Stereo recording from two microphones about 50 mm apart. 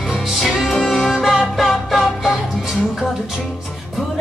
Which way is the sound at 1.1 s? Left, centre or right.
Centre.